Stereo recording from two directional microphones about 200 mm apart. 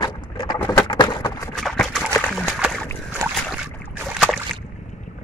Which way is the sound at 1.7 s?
5° left (ahead or behind).